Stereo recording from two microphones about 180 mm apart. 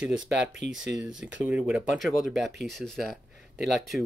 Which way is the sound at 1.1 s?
90° right.